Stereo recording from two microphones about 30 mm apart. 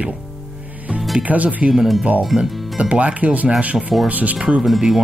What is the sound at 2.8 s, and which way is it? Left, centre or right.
Speech, right.